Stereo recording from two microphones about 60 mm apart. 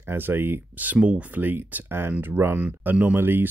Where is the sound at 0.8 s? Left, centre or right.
Right.